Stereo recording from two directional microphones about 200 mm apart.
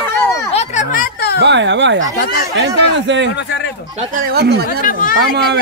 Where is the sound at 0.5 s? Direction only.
40° left (ahead or behind).